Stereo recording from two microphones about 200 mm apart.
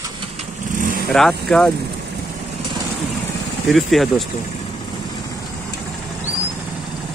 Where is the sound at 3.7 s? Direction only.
Centre (ahead or behind).